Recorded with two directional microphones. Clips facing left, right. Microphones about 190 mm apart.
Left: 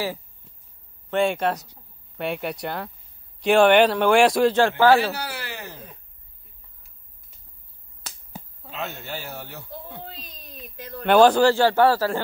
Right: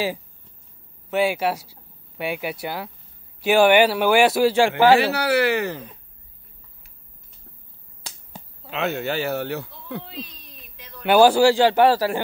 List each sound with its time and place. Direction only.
1.1 s speech: 5° right (ahead or behind)
4.9 s speech: 70° right (ahead or behind)
8.6 s speech: 75° right (ahead or behind)
10.8 s a sound: 45° left (ahead or behind)
11.1 s speech: 10° right (ahead or behind)